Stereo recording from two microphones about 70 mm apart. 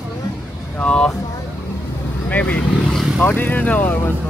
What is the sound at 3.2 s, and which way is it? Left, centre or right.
Speech, left.